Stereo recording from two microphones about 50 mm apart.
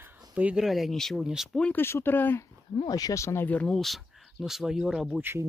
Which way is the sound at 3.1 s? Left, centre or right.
Left.